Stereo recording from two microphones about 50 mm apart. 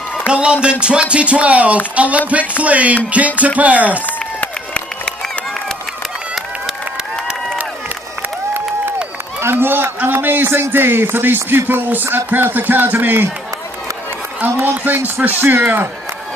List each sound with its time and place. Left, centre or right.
0.3 s speech: centre
4.0 s run: left
9.4 s a man's voice: right
14.6 s a man's voice: right